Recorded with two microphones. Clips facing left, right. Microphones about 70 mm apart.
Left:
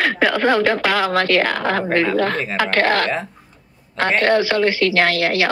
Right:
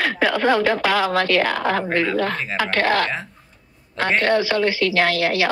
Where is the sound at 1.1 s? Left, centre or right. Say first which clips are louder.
Left 2 dB; left.